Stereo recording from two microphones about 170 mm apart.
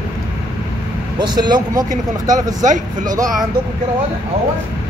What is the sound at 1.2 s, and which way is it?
Speech, 25° right (ahead or behind).